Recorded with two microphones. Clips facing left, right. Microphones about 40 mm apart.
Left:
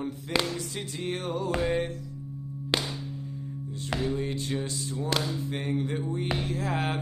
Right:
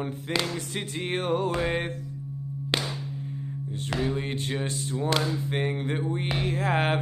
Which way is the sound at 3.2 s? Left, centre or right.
Right.